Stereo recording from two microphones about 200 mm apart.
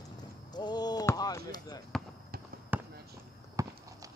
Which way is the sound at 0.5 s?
20° left (ahead or behind).